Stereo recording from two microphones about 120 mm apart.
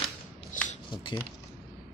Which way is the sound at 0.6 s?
90° left.